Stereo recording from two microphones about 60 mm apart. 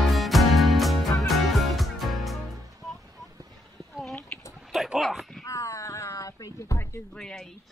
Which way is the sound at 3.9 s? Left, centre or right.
Centre.